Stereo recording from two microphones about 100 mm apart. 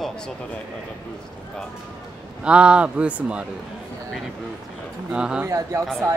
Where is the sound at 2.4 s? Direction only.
10° right (ahead or behind).